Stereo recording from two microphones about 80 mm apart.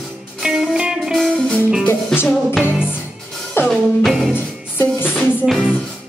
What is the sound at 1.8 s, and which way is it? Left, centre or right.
Music, left.